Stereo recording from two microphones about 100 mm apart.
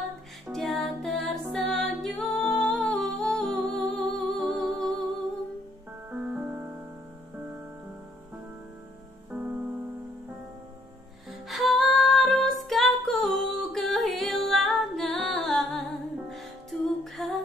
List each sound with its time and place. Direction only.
0.5 s music: centre (ahead or behind)
6.0 s music: 15° right (ahead or behind)
9.3 s music: 10° right (ahead or behind)
11.2 s music: centre (ahead or behind)
17.0 s humming: centre (ahead or behind)